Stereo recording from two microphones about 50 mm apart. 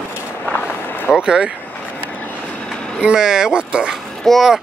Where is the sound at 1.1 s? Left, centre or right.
Centre.